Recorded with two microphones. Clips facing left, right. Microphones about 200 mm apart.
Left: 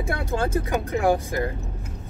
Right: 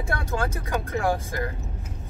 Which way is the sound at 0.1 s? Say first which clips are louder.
Left 4 dB; 25° left (ahead or behind).